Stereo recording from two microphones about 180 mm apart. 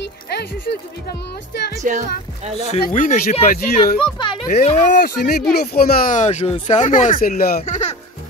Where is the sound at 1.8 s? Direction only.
40° right (ahead or behind).